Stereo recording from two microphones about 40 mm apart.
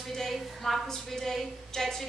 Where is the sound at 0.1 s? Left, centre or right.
Centre.